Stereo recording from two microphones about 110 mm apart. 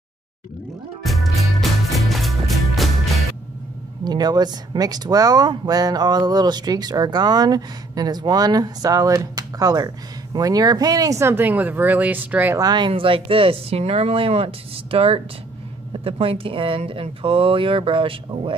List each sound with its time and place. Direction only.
1.0 s music: centre (ahead or behind)
4.0 s speech: 40° right (ahead or behind); by 12.5 s 15° right (ahead or behind)
12.5 s speech: 40° right (ahead or behind)